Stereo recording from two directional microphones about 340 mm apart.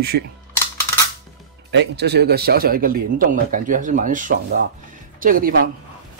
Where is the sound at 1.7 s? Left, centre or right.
Right.